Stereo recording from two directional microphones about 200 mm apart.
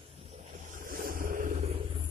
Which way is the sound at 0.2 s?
30° right (ahead or behind).